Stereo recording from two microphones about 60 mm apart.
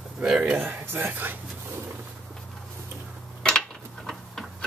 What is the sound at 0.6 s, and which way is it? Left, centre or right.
Speech, right.